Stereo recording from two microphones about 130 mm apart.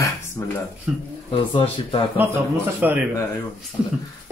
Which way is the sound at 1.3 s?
45° left (ahead or behind).